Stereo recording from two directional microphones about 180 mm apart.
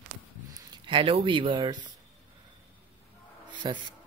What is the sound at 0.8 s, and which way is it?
Speech, 30° right (ahead or behind).